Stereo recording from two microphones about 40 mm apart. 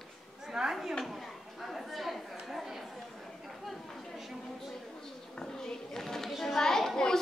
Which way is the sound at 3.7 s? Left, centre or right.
Centre.